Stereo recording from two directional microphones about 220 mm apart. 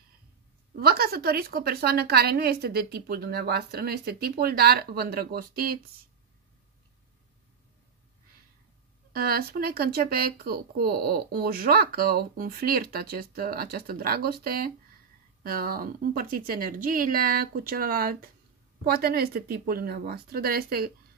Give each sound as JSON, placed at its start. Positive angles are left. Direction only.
{"t": 0.7, "sound": "speech", "side_deg": -45}
{"t": 9.1, "sound": "speech", "side_deg": -45}